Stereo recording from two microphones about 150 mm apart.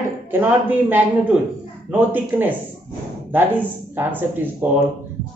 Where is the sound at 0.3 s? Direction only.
15° right (ahead or behind).